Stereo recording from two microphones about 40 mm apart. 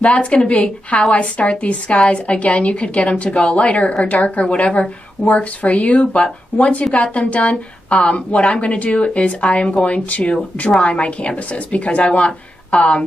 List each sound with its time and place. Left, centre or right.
0.0 s a woman's voice: left